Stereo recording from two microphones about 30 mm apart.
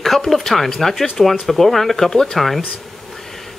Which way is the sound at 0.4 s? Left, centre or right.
Centre.